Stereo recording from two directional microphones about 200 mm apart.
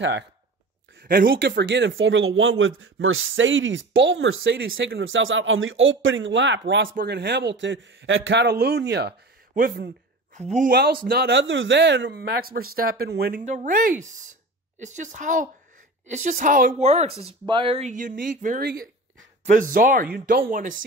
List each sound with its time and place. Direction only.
1.0 s speech: 45° right (ahead or behind)
1.5 s speech: 60° right (ahead or behind)
6.9 s a man's voice: 50° right (ahead or behind)
9.6 s speech: 45° right (ahead or behind)